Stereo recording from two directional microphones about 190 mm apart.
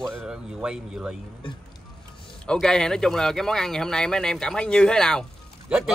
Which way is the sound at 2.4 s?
5° left (ahead or behind).